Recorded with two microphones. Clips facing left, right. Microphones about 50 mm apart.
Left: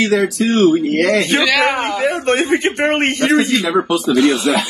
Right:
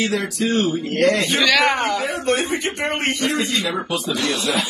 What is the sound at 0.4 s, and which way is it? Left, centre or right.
Speech, left.